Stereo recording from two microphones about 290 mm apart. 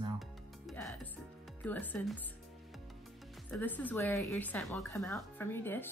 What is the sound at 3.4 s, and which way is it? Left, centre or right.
Speech, centre.